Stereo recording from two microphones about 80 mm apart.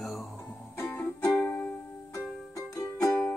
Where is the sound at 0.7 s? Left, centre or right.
Left.